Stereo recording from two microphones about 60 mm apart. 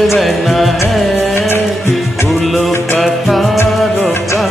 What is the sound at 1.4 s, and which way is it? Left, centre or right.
Music, left.